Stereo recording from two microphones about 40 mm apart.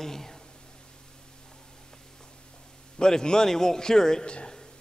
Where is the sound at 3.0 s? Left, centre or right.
Centre.